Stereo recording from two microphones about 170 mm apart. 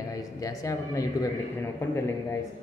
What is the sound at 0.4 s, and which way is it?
Speech, 20° left (ahead or behind).